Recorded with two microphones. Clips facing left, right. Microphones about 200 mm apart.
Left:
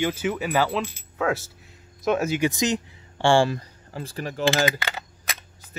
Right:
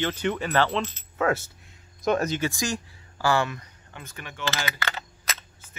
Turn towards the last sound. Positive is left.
turn(degrees=15)  # may be behind; listen again after turning